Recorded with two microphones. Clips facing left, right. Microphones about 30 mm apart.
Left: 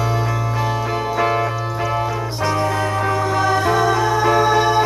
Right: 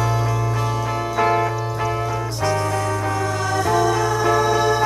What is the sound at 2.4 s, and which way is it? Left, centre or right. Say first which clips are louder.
Music: left 2 dB; left.